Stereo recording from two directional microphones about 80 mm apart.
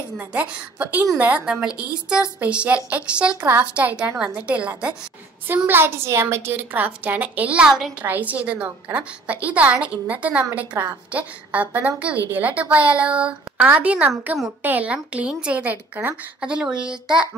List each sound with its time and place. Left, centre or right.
0.3 s a woman's voice: centre
1.5 s a woman's voice: centre
3.3 s speech: right
3.7 s a woman's voice: centre
5.7 s a woman's voice: right
6.7 s speech: right
8.0 s a woman's voice: right
16.3 s a woman's voice: centre